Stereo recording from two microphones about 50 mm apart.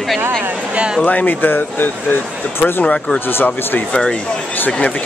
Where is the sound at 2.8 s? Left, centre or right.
Centre.